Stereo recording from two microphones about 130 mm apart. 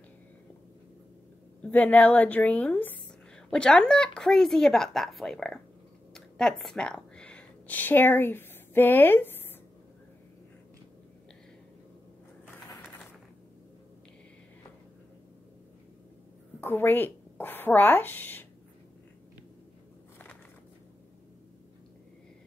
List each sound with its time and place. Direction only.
1.6 s a woman's voice: 10° left (ahead or behind)
16.6 s a woman's voice: 15° left (ahead or behind)